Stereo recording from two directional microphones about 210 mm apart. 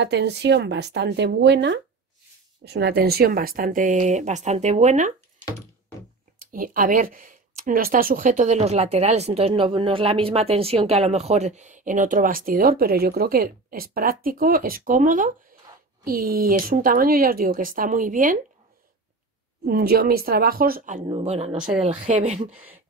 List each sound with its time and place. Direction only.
0.0 s speech: 55° right (ahead or behind); by 5.1 s 35° right (ahead or behind)
6.4 s speech: 40° right (ahead or behind)
19.7 s speech: 45° right (ahead or behind)
21.1 s speech: 30° right (ahead or behind)
22.5 s speech: 10° right (ahead or behind)